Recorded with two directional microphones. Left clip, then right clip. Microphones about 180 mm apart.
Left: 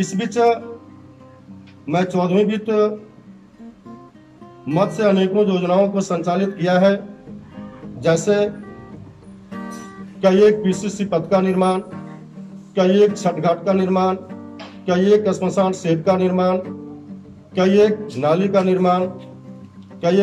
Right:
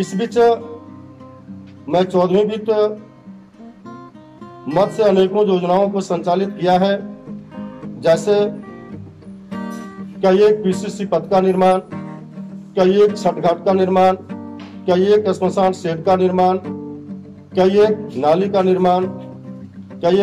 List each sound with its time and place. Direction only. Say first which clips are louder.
0.0 s a man's voice: right 3 dB; 15° right (ahead or behind)
1.9 s a man's voice: right 4 dB; 15° right (ahead or behind)
4.6 s a man's voice: right 3 dB; 15° right (ahead or behind)
7.5 s music: right 4 dB; 15° right (ahead or behind)
9.5 s music: right 3 dB; 35° right (ahead or behind)
10.2 s a man's voice: right 1 dB; 15° right (ahead or behind)